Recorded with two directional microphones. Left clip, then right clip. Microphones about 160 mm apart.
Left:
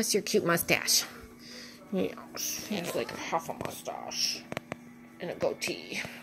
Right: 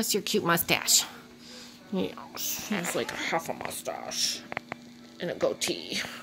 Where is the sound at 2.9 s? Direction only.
40° right (ahead or behind).